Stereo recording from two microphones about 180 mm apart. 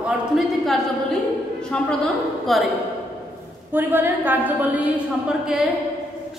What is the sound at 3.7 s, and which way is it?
A woman's voice, 10° right (ahead or behind).